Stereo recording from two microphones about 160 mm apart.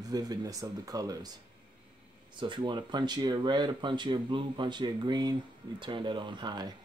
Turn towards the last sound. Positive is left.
turn(degrees=-25)  # may be behind; listen again after turning